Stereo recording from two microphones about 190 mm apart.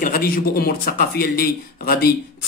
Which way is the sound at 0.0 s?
50° left (ahead or behind).